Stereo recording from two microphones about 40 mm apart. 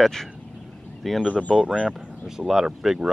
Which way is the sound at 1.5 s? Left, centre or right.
Right.